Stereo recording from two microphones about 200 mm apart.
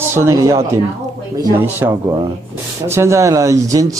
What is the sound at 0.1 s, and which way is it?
A man's voice, 15° right (ahead or behind).